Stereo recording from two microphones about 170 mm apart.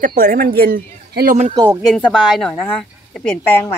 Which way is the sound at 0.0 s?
55° right (ahead or behind).